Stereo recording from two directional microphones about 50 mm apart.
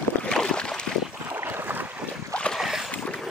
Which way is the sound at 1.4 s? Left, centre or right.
Right.